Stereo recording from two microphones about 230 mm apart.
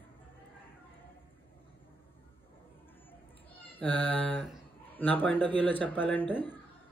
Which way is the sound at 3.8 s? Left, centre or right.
Centre.